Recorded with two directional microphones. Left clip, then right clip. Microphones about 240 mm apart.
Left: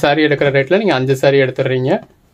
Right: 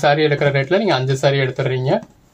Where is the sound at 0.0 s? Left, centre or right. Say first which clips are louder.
Left 2 dB; left.